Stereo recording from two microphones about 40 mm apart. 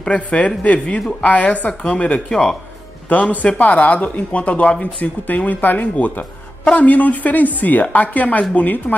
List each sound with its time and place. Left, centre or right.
0.1 s a woman's voice: left
2.2 s speech: centre
3.4 s speech: left